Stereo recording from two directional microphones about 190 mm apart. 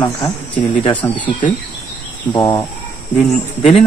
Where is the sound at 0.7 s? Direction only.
30° left (ahead or behind).